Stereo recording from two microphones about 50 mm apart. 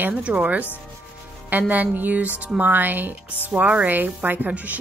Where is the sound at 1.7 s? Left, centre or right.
Right.